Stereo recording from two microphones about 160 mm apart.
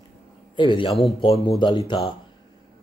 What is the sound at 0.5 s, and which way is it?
A man's voice, 30° left (ahead or behind).